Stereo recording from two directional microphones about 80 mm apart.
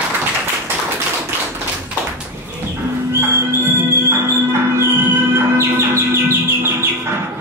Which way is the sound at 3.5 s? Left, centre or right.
Right.